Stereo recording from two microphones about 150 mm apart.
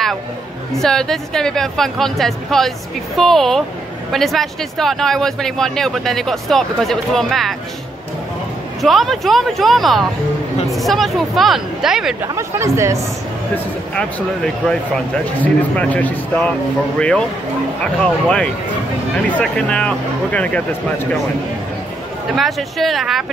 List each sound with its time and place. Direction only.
0.7 s speech: 5° left (ahead or behind)
8.8 s speech: centre (ahead or behind)
12.2 s speech: 20° right (ahead or behind)
13.9 s speech: 5° left (ahead or behind)
22.3 s speech: centre (ahead or behind)